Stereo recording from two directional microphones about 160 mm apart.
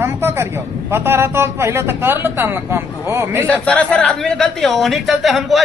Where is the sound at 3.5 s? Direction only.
10° left (ahead or behind).